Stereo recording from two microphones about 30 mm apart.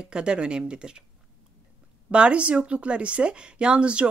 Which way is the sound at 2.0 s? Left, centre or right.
Right.